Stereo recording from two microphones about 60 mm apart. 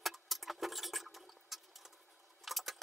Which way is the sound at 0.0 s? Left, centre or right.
Centre.